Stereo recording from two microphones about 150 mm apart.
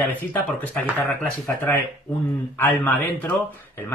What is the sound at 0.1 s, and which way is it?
Speech, 10° left (ahead or behind).